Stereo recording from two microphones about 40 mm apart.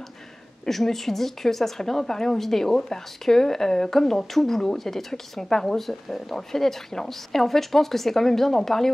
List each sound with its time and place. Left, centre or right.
0.7 s speech: centre